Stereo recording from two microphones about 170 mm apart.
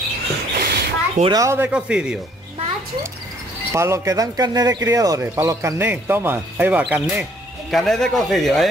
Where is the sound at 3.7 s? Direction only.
15° right (ahead or behind).